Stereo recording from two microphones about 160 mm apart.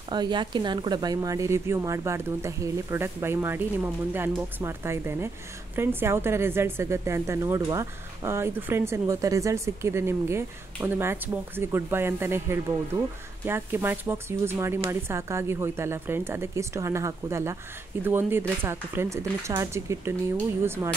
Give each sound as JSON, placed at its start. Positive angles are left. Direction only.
{"t": 0.1, "sound": "a woman's voice", "side_deg": -25}